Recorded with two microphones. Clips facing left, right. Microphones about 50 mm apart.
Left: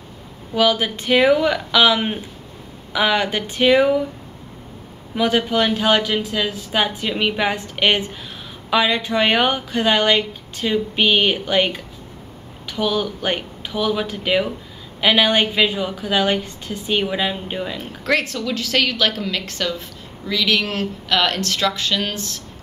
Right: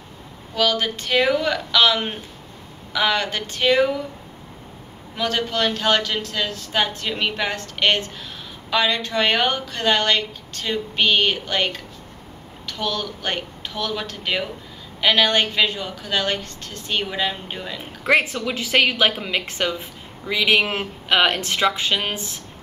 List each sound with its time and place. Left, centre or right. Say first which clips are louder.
0.6 s speech: left 3 dB; centre
5.1 s speech: left 5 dB; centre
18.0 s speech: right 2 dB; centre